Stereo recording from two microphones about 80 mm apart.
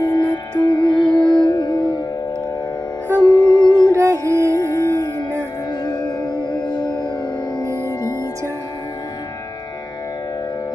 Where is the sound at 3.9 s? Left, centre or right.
Right.